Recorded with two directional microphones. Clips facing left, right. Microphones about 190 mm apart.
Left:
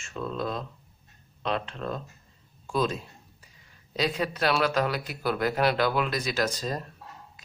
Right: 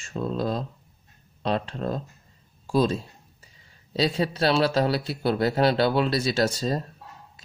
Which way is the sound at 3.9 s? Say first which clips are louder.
Right 4 dB; 30° right (ahead or behind).